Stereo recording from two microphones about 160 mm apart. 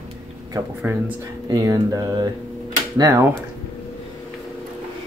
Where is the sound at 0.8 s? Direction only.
10° right (ahead or behind).